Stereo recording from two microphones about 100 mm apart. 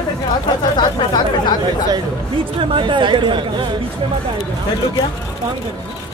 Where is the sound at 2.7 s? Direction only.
55° right (ahead or behind).